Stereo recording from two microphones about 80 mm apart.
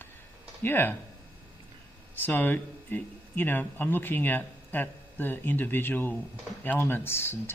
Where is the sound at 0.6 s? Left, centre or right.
Left.